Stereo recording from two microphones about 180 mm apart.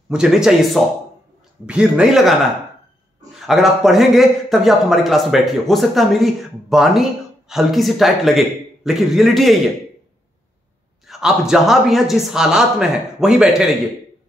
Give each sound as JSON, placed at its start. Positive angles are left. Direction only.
{"t": 0.1, "sound": "a man's voice", "side_deg": -5}
{"t": 3.3, "sound": "a man's voice", "side_deg": 0}
{"t": 11.1, "sound": "a man's voice", "side_deg": -5}